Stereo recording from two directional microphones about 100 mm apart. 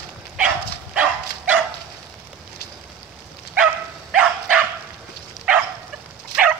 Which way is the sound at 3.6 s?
10° right (ahead or behind).